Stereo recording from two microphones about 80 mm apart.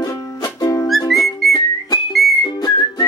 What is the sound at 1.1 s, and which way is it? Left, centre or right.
Whistling, centre.